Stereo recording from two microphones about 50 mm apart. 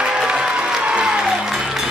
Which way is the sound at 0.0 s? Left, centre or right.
Centre.